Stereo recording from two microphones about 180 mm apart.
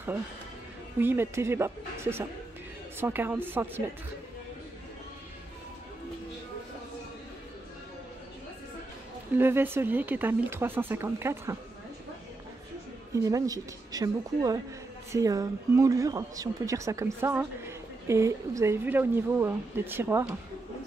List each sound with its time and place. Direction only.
0.9 s speech: 15° right (ahead or behind)
9.4 s speech: 15° right (ahead or behind)
13.1 s a woman's voice: 20° right (ahead or behind)